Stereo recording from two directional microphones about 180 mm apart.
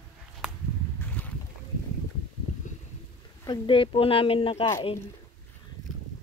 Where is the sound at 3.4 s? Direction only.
25° left (ahead or behind).